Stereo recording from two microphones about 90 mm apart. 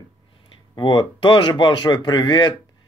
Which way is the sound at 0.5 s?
65° left (ahead or behind).